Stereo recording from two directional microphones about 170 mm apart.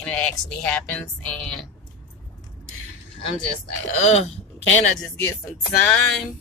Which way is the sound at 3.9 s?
45° left (ahead or behind).